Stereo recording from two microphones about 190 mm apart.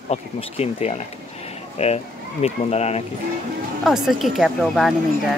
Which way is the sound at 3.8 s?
Centre (ahead or behind).